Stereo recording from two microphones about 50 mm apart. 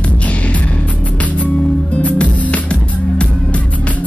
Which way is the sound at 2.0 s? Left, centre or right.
Left.